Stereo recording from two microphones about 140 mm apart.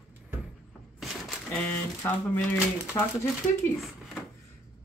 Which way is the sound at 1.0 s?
5° left (ahead or behind).